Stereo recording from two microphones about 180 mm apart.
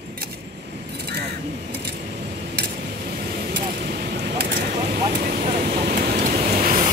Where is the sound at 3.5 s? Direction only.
60° right (ahead or behind).